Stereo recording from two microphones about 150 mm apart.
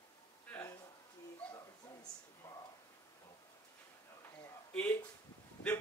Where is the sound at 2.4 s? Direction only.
20° left (ahead or behind).